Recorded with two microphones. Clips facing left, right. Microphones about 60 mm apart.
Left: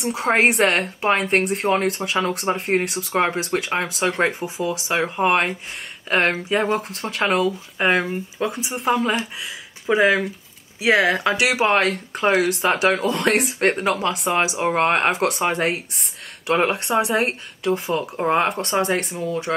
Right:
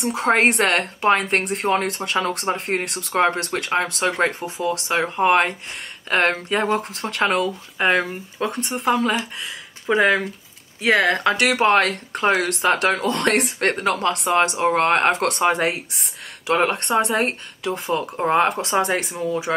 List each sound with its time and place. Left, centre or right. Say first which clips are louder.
0.0 s speech: even; centre